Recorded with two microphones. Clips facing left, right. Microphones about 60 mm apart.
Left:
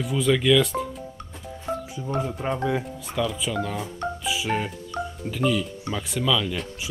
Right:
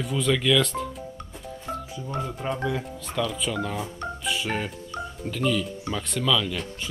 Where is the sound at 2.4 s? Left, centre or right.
Centre.